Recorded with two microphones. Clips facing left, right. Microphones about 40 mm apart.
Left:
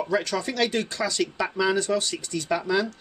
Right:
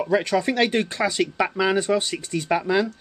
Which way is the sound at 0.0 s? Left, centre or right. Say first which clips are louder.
Right 5 dB; right.